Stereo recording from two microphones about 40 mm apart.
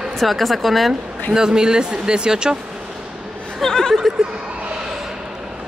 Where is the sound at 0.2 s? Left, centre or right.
Centre.